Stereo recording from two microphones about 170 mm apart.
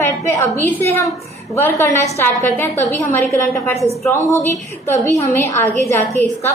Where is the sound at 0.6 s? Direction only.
10° left (ahead or behind).